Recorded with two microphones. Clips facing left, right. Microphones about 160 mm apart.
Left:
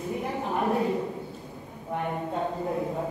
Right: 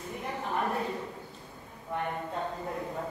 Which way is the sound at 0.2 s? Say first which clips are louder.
Left 2 dB; 15° left (ahead or behind).